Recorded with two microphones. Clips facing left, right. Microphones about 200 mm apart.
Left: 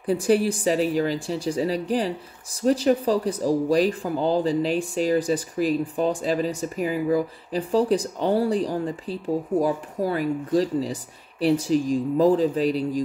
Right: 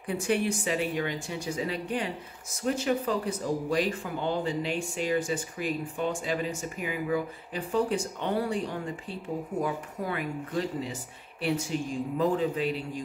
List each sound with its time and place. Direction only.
0.0 s speech: 35° left (ahead or behind)